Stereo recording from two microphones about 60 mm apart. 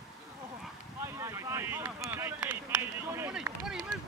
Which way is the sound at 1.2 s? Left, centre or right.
Right.